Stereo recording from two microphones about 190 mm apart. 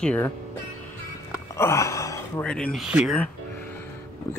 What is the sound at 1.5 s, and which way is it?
Gasp, 15° left (ahead or behind).